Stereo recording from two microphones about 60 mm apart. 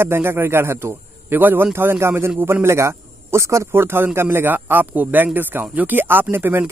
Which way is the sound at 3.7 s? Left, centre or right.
Right.